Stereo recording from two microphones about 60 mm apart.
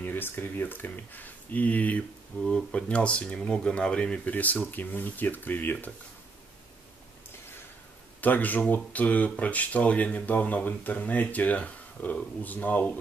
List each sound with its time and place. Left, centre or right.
0.0 s speech: left
8.2 s speech: left